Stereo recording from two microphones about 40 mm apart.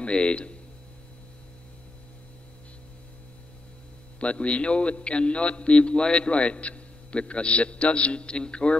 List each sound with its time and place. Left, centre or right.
0.0 s a man's voice: left
4.2 s a man's voice: left